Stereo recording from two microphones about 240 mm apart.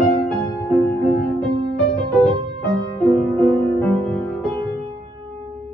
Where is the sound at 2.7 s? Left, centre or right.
Centre.